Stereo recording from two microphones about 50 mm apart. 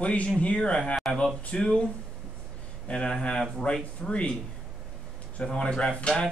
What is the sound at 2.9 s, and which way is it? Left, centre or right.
Speech, centre.